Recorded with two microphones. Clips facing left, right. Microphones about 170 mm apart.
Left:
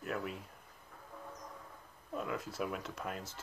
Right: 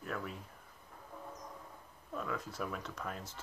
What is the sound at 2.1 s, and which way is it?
Speech, 10° left (ahead or behind).